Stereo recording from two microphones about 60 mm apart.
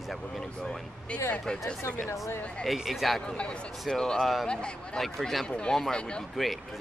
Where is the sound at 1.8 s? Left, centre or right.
Left.